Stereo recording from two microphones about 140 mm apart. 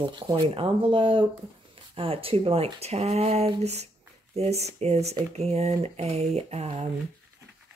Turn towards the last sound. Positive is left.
turn(degrees=-50)  # may be behind; listen again after turning